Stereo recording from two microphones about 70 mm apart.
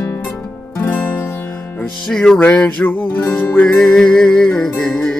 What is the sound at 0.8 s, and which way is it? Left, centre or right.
Music, left.